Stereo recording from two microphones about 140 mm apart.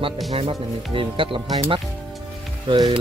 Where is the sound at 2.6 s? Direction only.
35° right (ahead or behind).